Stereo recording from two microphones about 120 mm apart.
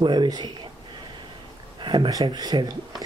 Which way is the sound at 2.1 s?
30° right (ahead or behind).